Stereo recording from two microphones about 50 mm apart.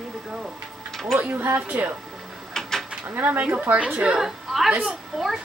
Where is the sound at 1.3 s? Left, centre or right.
Right.